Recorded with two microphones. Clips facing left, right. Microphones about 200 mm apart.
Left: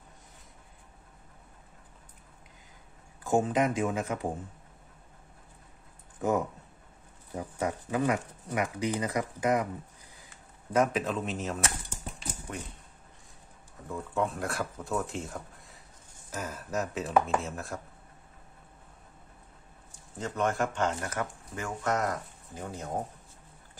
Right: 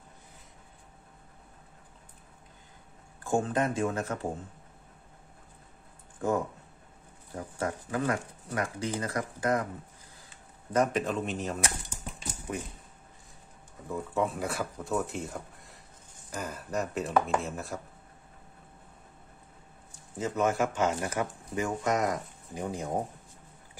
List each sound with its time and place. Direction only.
3.3 s speech: 15° left (ahead or behind)
7.3 s speech: 15° left (ahead or behind)
10.7 s speech: 5° left (ahead or behind)
13.8 s speech: centre (ahead or behind)
19.9 s a man's voice: 5° right (ahead or behind)